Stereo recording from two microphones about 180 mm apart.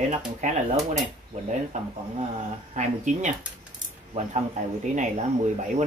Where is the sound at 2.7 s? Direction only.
40° right (ahead or behind).